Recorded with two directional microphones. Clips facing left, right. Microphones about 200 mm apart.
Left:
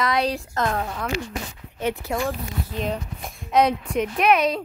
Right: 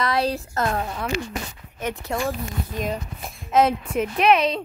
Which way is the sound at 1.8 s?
5° left (ahead or behind).